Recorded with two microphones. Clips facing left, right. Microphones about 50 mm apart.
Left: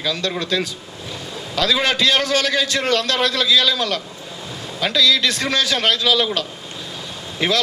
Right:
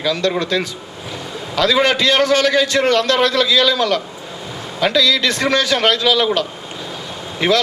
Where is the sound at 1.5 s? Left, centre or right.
Right.